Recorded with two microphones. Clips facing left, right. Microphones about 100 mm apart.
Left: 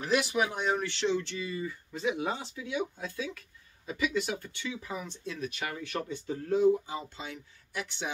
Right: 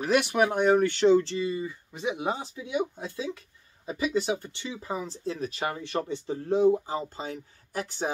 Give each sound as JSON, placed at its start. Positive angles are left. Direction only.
{"t": 0.0, "sound": "speech", "side_deg": -60}
{"t": 1.3, "sound": "speech", "side_deg": -25}